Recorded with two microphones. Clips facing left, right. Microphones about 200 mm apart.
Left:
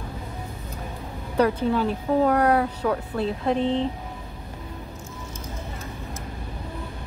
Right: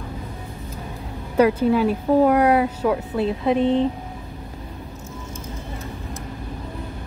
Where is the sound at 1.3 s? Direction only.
10° right (ahead or behind).